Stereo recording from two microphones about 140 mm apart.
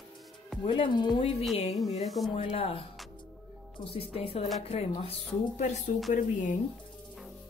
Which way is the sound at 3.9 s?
45° left (ahead or behind).